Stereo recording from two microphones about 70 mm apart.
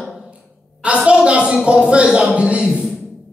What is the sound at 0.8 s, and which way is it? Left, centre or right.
Speech, centre.